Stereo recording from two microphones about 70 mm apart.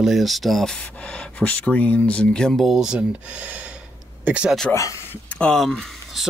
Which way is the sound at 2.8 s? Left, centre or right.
Centre.